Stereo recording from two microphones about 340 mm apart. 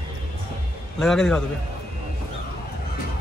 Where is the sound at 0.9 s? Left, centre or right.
Centre.